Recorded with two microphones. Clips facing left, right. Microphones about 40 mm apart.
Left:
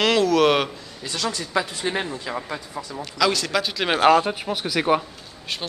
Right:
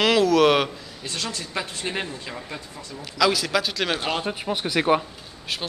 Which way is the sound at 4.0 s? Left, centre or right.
Left.